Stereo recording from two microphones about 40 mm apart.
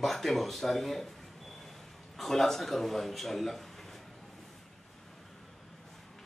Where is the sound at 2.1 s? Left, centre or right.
Centre.